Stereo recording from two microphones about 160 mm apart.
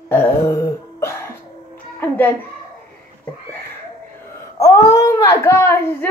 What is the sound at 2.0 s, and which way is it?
Music, 10° left (ahead or behind).